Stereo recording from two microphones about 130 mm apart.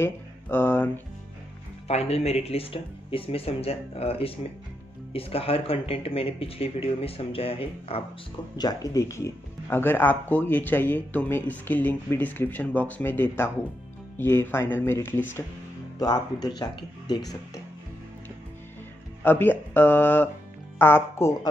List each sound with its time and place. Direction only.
0.0 s speech: 15° left (ahead or behind)
1.9 s speech: 55° left (ahead or behind)
8.5 s speech: 25° left (ahead or behind)
16.0 s speech: 30° left (ahead or behind)
19.2 s speech: 15° left (ahead or behind)